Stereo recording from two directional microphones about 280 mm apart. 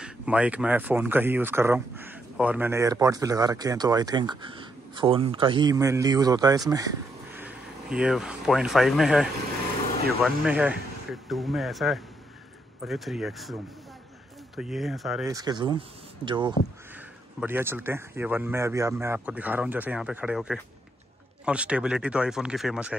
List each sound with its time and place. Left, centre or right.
0.0 s a man's voice: centre
15.2 s speech: centre